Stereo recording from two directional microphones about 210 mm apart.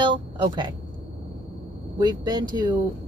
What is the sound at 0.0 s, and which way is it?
Speech, 20° right (ahead or behind).